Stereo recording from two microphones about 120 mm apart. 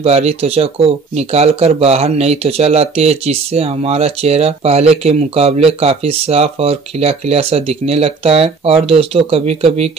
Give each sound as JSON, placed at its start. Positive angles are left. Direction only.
{"t": 0.0, "sound": "speech", "side_deg": -60}